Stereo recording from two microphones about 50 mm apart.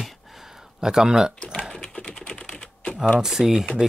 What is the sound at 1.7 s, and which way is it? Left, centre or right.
Typing, centre.